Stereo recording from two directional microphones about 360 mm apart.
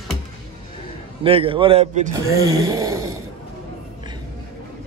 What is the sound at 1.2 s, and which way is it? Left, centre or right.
Speech, centre.